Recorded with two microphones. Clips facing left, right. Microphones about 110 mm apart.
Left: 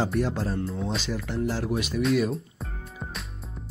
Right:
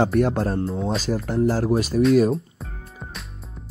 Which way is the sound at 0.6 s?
35° right (ahead or behind).